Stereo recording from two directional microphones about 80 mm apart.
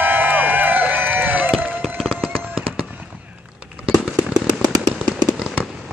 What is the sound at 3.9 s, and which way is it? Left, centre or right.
Fireworks, centre.